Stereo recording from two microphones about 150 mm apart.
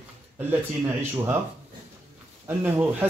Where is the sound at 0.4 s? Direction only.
15° right (ahead or behind).